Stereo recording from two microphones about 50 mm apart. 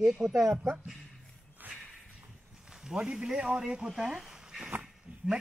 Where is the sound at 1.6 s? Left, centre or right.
Right.